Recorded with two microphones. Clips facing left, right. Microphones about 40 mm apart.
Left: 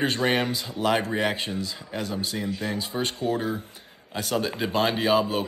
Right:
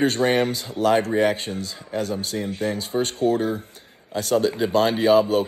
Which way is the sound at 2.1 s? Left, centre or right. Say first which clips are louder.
Right 2 dB; right.